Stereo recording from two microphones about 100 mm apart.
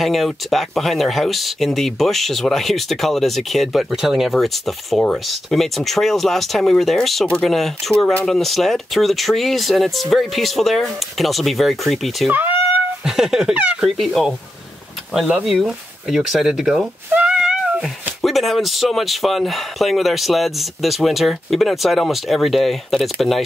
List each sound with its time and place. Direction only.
0.0 s speech: centre (ahead or behind)
12.3 s speech: 20° right (ahead or behind)
13.0 s speech: 5° right (ahead or behind)